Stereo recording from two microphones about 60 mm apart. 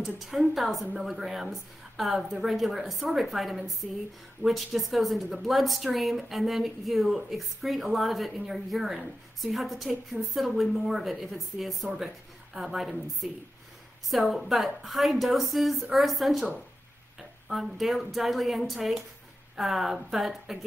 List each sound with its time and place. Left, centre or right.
0.0 s a woman's voice: centre
17.5 s a woman's voice: centre